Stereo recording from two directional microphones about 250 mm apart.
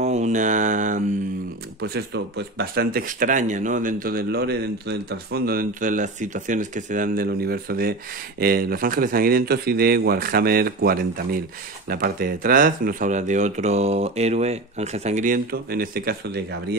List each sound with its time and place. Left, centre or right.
0.0 s mantra: right
1.8 s speech: right